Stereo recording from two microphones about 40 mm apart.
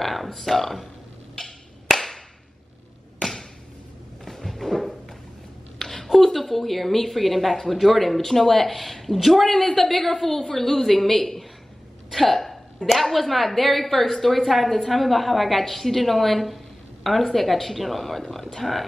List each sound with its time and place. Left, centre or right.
0.0 s a woman's voice: centre
1.3 s wood block: centre
4.2 s a sound: centre
5.8 s a woman's voice: centre
12.1 s a sound: centre
13.0 s a woman's voice: centre